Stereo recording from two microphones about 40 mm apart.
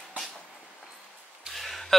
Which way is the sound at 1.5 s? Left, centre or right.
Centre.